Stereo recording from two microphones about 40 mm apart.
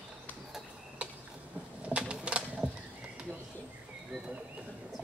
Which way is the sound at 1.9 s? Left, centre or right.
Right.